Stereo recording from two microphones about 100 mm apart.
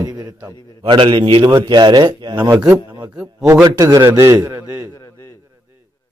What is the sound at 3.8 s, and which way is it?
A man's voice, 30° right (ahead or behind).